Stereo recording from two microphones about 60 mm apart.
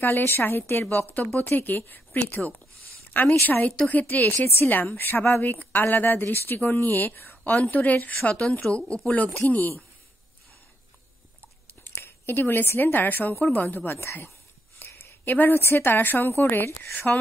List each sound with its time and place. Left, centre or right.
0.0 s a woman's voice: left
8.6 s speech: centre
11.8 s a woman's voice: left
13.9 s speech: left
15.0 s a woman's voice: left